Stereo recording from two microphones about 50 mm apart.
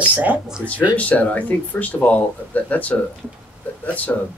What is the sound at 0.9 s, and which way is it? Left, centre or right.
Speech, left.